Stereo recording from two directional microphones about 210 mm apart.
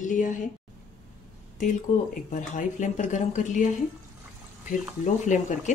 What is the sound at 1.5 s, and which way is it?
Speech, 40° left (ahead or behind).